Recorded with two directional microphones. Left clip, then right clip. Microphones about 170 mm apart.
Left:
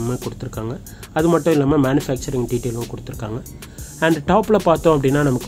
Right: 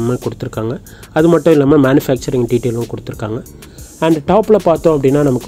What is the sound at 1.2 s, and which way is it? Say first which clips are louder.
Speech: right 7 dB; 20° right (ahead or behind).